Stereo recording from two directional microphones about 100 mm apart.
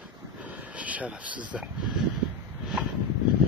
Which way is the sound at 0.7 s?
15° right (ahead or behind).